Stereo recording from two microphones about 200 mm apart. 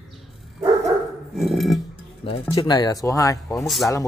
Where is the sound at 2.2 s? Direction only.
25° left (ahead or behind).